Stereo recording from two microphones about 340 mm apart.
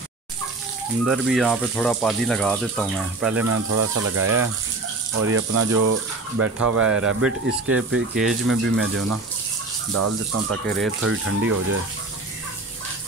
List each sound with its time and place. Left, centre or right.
1.0 s speech: centre
3.4 s speech: right